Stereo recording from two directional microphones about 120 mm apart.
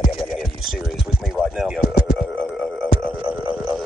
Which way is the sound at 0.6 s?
Centre (ahead or behind).